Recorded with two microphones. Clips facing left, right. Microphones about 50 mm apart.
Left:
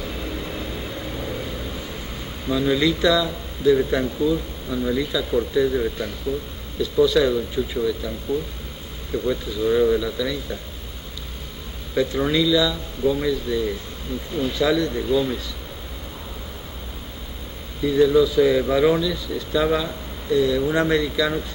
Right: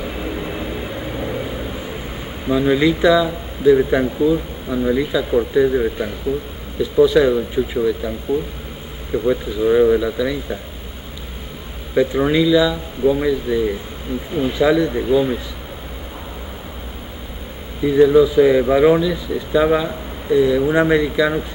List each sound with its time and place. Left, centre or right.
0.0 s vehicle: centre
2.4 s speech: right
11.9 s speech: centre
17.8 s speech: right